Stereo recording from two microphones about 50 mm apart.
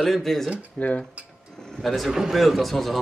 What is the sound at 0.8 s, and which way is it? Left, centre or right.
Speech, centre.